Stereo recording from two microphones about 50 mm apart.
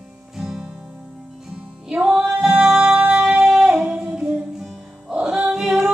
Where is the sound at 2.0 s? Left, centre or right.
Centre.